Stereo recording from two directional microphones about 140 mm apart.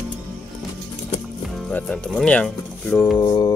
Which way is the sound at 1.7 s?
10° left (ahead or behind).